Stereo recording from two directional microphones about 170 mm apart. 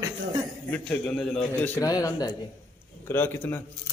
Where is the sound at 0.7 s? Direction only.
5° left (ahead or behind).